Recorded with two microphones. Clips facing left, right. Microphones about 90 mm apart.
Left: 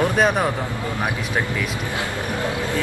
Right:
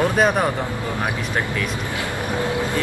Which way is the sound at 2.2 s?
20° right (ahead or behind).